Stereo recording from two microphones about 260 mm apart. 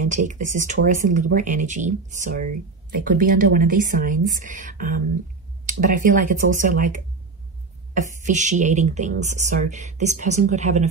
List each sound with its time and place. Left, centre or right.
0.1 s speech: right